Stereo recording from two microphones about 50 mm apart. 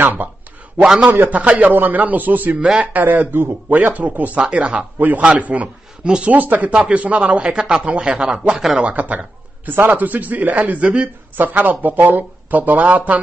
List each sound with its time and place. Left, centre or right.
0.0 s a man's voice: right
0.8 s a man's voice: centre
1.3 s a man's voice: right
2.6 s a man's voice: right
3.0 s a man's voice: right
4.4 s a man's voice: right
4.9 s a man's voice: right
5.2 s a man's voice: right
6.7 s a man's voice: right
8.8 s a man's voice: right